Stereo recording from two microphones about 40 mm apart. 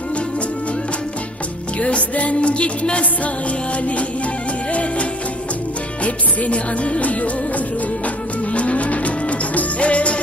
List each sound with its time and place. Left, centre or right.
1.8 s music: left
6.0 s music: left